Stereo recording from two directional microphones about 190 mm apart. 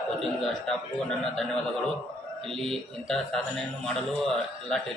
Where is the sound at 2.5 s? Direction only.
Centre (ahead or behind).